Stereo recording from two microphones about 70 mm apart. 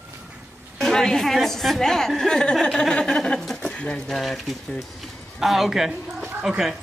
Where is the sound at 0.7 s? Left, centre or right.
Centre.